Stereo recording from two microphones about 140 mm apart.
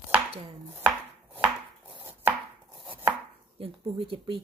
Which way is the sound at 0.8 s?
15° right (ahead or behind).